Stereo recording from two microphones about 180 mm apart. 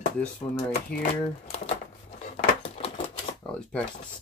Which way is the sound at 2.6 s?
30° left (ahead or behind).